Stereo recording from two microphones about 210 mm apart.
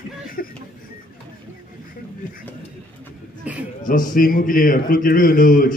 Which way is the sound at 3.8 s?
40° left (ahead or behind).